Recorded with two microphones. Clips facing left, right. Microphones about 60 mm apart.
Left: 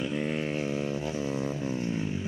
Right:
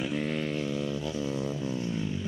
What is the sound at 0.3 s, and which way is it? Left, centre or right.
Vehicle, left.